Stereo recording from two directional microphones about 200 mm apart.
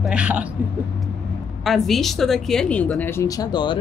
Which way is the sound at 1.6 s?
Centre (ahead or behind).